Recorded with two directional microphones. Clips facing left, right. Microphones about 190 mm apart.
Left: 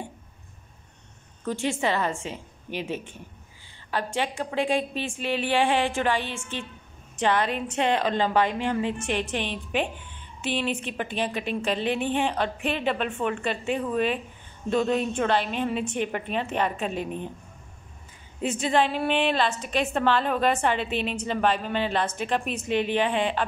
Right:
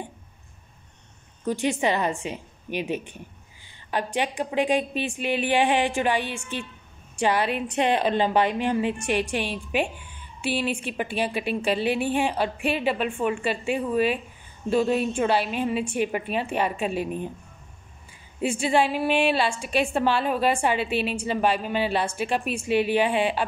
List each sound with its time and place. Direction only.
1.4 s a woman's voice: 15° right (ahead or behind)
18.4 s a woman's voice: 10° right (ahead or behind)